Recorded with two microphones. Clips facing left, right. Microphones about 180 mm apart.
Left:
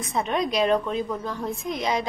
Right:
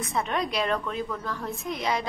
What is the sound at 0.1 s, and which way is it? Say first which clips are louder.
A woman's voice: left 4 dB; 20° left (ahead or behind).